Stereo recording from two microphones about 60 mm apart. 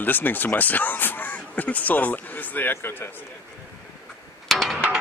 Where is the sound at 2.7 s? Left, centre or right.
Left.